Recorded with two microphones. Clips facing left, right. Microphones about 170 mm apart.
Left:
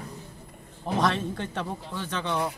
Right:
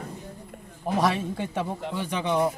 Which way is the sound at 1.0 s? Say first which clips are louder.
Right 1 dB; 10° right (ahead or behind).